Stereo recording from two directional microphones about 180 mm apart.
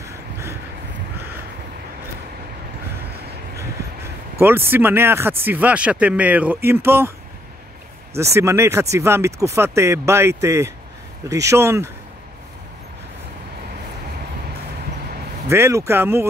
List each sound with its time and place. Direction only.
0.0 s a sound: 15° right (ahead or behind)
4.4 s speech: 10° right (ahead or behind)
8.2 s speech: 15° right (ahead or behind)
15.5 s speech: 15° right (ahead or behind)